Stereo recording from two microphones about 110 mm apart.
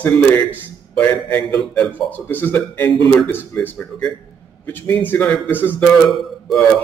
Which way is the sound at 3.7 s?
5° left (ahead or behind).